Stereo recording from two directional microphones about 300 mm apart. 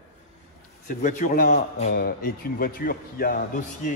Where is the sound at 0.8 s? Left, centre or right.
Left.